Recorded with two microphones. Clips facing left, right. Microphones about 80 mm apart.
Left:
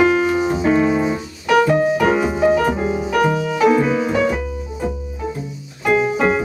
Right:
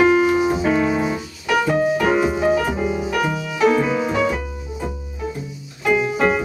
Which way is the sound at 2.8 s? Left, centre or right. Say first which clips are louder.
Left 1 dB; centre.